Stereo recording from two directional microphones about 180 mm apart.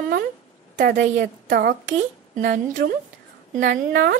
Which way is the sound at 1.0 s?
60° right (ahead or behind).